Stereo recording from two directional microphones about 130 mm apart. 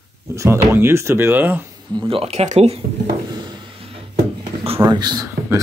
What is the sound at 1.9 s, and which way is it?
Speech, 45° right (ahead or behind).